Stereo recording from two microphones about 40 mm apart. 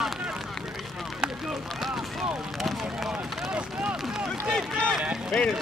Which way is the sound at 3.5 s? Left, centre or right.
Right.